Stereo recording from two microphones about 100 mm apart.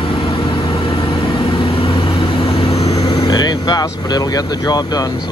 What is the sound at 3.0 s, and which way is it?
Vehicle, 60° left (ahead or behind).